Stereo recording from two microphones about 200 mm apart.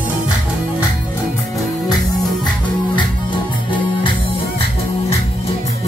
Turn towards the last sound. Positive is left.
turn(degrees=25)  # may be behind; listen again after turning